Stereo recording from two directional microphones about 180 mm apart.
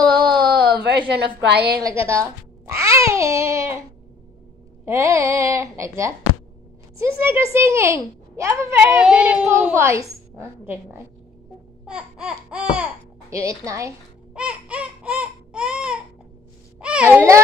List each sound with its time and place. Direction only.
0.2 s a sound: 25° right (ahead or behind)
0.6 s a woman's voice: 65° right (ahead or behind)
2.0 s a child's voice: 15° right (ahead or behind)
4.8 s a woman's voice: 15° right (ahead or behind)
14.3 s baby cry: 5° right (ahead or behind)
16.8 s a child's voice: 5° right (ahead or behind)